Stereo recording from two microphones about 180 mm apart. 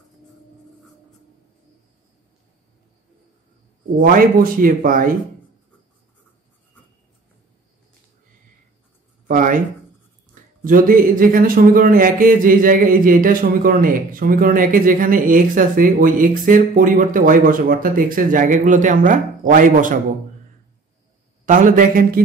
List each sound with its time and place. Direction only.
4.0 s a man's voice: 50° right (ahead or behind)
9.3 s a sound: 50° right (ahead or behind)
10.6 s a man's voice: 50° right (ahead or behind)
21.5 s a man's voice: 50° right (ahead or behind)